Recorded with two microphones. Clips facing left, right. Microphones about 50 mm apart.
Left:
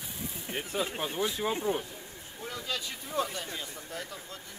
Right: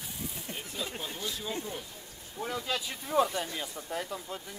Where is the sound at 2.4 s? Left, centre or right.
Centre.